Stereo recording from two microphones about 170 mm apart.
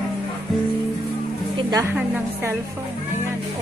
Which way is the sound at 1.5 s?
25° right (ahead or behind).